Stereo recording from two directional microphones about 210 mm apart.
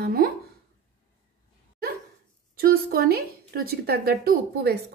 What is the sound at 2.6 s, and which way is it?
A woman's voice, 45° right (ahead or behind).